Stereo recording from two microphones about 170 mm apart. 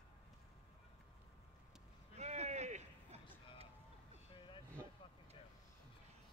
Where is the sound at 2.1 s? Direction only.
40° right (ahead or behind).